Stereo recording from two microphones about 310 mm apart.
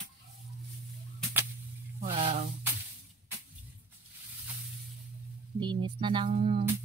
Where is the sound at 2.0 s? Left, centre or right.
Centre.